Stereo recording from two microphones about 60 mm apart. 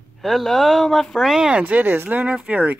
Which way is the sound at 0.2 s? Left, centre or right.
Centre.